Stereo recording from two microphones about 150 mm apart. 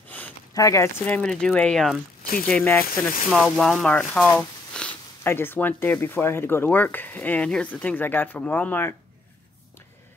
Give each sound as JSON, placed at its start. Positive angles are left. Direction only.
{"t": 0.1, "sound": "a sound", "side_deg": 10}
{"t": 0.6, "sound": "speech", "side_deg": 20}
{"t": 1.0, "sound": "speech", "side_deg": 5}
{"t": 3.3, "sound": "speech", "side_deg": 0}